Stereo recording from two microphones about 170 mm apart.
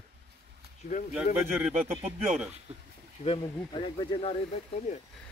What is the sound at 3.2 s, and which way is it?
Speech, 30° left (ahead or behind).